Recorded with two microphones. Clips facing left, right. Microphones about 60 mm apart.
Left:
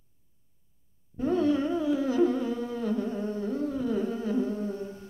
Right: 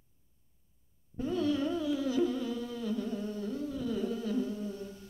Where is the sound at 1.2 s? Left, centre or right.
Left.